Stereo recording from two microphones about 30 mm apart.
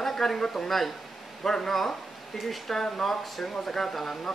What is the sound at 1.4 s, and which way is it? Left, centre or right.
Speech, centre.